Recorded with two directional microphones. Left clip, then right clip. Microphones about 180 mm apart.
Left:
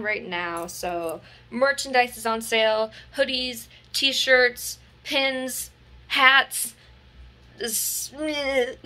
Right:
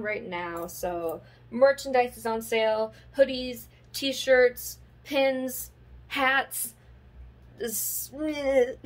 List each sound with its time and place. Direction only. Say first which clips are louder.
0.0 s a woman's voice: left 4 dB; 10° right (ahead or behind)
1.5 s speech: right 1 dB; 5° left (ahead or behind)
1.8 s a woman's voice: left 3 dB; 5° right (ahead or behind)
7.5 s a woman's voice: left 4 dB; 15° right (ahead or behind)